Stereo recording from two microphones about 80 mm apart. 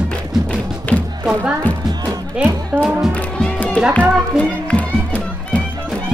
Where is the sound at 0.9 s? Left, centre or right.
Left.